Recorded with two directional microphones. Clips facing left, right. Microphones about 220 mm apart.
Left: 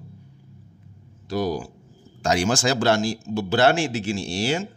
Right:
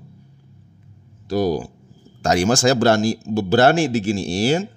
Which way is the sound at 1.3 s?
40° right (ahead or behind).